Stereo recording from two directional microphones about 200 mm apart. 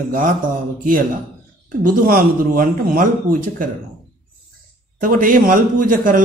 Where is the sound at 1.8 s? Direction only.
45° right (ahead or behind).